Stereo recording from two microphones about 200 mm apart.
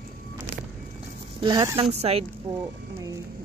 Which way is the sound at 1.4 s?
20° right (ahead or behind).